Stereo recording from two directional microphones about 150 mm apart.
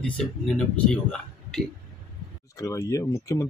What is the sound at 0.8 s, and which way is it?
Speech, 5° left (ahead or behind).